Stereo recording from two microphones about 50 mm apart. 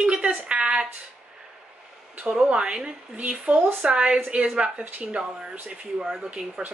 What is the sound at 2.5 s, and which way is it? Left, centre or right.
Speech, centre.